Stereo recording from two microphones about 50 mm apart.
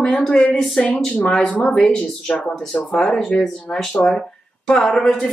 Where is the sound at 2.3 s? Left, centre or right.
Left.